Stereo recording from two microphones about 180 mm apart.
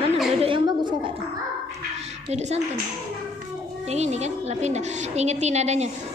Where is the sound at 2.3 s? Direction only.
40° right (ahead or behind).